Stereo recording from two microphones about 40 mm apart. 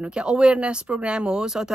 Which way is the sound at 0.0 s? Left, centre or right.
Right.